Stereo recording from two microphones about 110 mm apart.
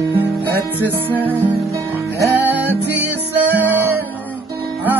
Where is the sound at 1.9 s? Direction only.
15° right (ahead or behind).